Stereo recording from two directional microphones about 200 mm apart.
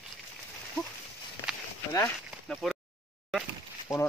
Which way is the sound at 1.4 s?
10° right (ahead or behind).